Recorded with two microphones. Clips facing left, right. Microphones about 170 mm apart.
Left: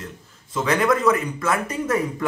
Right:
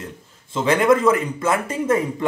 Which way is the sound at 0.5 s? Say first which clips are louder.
Right 4 dB; 25° right (ahead or behind).